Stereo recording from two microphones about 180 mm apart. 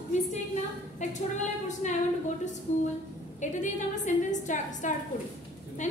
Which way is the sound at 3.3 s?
40° left (ahead or behind).